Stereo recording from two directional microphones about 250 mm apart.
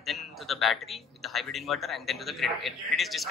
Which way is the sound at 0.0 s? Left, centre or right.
Centre.